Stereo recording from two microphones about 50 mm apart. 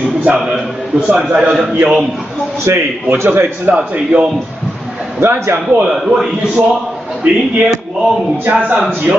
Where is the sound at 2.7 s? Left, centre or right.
Right.